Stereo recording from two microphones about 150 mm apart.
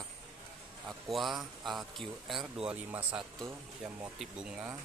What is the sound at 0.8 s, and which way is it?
Speech, centre (ahead or behind).